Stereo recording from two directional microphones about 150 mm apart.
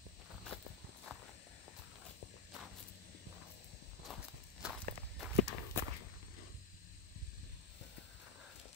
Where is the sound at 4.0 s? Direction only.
5° right (ahead or behind).